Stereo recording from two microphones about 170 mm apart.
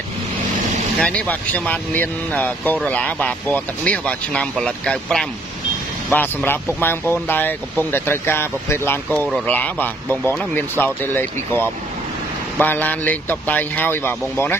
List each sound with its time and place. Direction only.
1.0 s speech: 10° left (ahead or behind)